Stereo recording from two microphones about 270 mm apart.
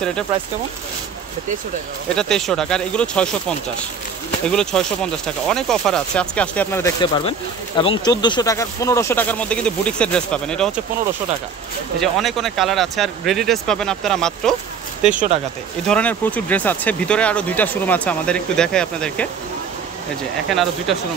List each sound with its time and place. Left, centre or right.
2.1 s speech: centre
12.0 s speech: centre
15.0 s speech: right
15.9 s speech: centre
20.4 s speech: centre